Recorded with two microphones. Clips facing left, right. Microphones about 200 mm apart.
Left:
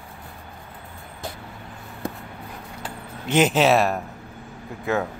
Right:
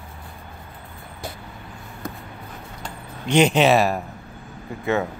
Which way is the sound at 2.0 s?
30° left (ahead or behind).